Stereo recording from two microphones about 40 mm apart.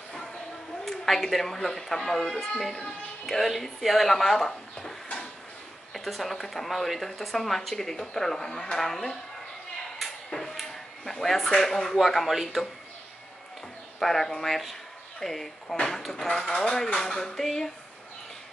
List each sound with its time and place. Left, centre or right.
0.8 s a woman's voice: centre
5.9 s speech: centre
10.3 s a sound: centre
12.3 s speech: centre
13.9 s speech: centre